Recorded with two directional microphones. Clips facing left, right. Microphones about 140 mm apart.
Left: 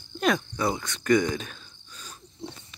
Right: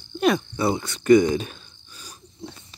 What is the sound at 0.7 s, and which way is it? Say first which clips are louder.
Speech: right 6 dB; 30° right (ahead or behind).